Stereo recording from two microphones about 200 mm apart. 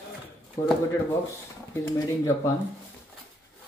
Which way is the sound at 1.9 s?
15° left (ahead or behind).